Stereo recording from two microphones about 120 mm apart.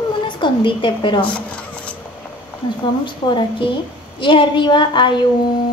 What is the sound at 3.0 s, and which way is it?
Speech, 40° left (ahead or behind).